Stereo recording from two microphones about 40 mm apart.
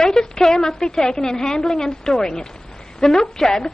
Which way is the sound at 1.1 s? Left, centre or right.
Centre.